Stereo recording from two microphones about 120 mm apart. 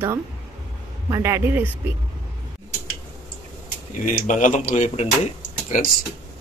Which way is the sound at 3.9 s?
90° left.